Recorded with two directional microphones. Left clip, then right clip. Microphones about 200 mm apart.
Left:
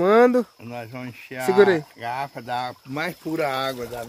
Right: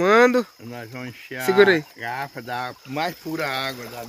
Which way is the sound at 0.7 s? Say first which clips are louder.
Left 1 dB; 30° left (ahead or behind).